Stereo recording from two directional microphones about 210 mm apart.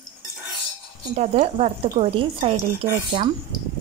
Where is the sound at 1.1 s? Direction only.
30° right (ahead or behind).